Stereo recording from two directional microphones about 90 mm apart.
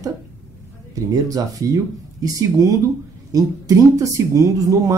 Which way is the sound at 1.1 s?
40° right (ahead or behind).